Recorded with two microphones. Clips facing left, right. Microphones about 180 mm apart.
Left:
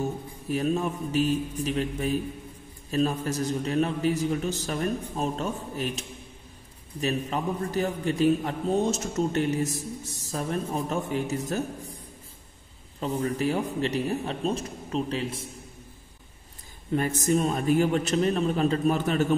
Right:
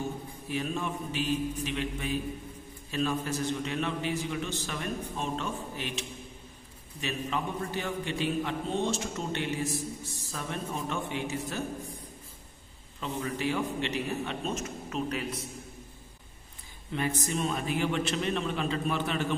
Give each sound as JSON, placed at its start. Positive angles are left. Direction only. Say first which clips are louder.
{"t": 0.5, "sound": "a man's voice", "louder": "left 6 dB", "side_deg": 40}
{"t": 13.0, "sound": "a man's voice", "louder": "left 5 dB", "side_deg": 40}
{"t": 16.9, "sound": "a man's voice", "louder": "left 7 dB", "side_deg": 45}